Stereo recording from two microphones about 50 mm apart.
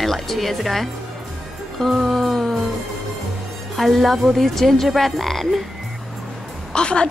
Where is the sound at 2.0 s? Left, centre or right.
Centre.